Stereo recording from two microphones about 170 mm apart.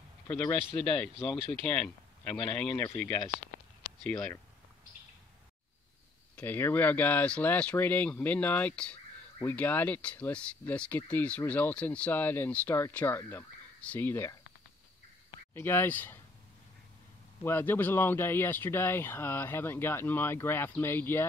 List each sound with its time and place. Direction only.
0.3 s speech: 10° left (ahead or behind)
6.3 s speech: 10° left (ahead or behind)
17.4 s speech: 15° left (ahead or behind)